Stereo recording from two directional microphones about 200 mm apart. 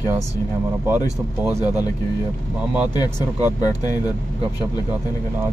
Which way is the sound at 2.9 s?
20° left (ahead or behind).